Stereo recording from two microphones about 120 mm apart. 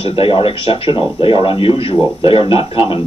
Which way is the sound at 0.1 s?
50° left (ahead or behind).